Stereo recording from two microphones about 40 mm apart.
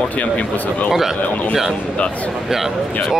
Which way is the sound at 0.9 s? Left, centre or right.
Centre.